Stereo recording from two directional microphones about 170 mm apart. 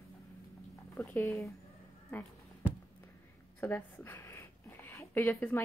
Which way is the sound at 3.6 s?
10° left (ahead or behind).